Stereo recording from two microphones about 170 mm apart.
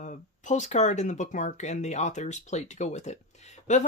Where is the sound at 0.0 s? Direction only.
45° left (ahead or behind).